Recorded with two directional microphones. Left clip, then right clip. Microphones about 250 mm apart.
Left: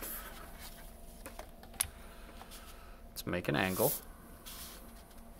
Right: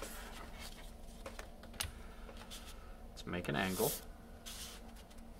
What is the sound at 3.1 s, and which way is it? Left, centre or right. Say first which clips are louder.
Speech: left 5 dB; left.